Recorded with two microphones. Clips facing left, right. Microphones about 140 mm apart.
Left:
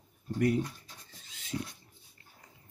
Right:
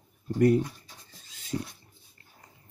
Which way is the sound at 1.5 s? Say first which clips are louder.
Right 4 dB; 30° right (ahead or behind).